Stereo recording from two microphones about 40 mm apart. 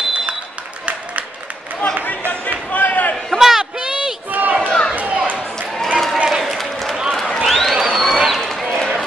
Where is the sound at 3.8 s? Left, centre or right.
Centre.